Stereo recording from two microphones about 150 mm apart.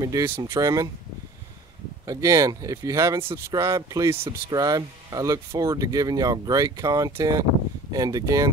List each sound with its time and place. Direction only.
0.0 s speech: 25° right (ahead or behind)
2.0 s speech: 20° right (ahead or behind)